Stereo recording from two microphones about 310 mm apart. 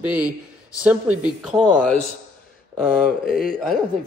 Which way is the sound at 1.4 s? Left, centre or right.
Centre.